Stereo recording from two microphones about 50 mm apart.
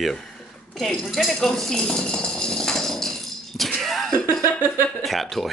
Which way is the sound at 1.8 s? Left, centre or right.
Centre.